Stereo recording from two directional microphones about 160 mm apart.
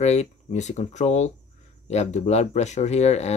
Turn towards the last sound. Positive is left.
turn(degrees=40)  # may be behind; listen again after turning